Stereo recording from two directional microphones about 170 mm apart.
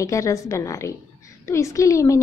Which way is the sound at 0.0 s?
20° left (ahead or behind).